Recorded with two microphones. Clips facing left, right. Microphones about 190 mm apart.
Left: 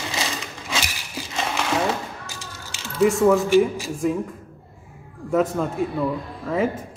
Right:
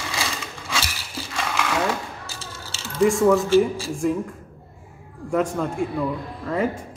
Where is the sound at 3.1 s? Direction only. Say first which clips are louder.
Even; centre (ahead or behind).